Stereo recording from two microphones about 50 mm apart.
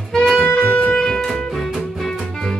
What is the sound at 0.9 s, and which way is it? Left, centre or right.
Music, centre.